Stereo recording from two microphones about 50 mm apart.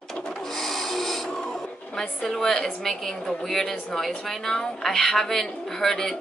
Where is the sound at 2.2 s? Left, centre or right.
Centre.